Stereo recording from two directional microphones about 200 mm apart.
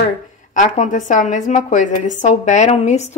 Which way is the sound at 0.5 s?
40° left (ahead or behind).